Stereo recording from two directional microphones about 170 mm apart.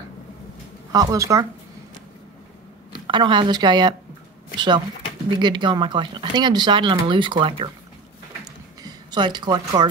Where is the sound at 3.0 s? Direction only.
30° right (ahead or behind).